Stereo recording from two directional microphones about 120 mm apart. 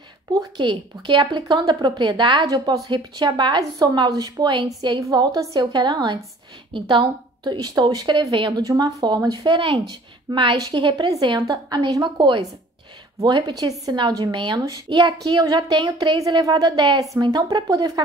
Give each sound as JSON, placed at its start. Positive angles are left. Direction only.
{"t": 0.3, "sound": "speech", "side_deg": -30}
{"t": 0.7, "sound": "speech", "side_deg": -40}
{"t": 2.4, "sound": "speech", "side_deg": -30}
{"t": 8.3, "sound": "speech", "side_deg": -40}
{"t": 9.4, "sound": "speech", "side_deg": -45}